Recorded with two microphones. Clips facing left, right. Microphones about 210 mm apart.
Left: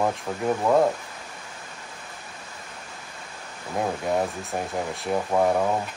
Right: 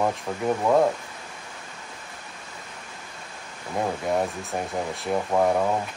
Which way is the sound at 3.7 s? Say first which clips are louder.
Even; centre (ahead or behind).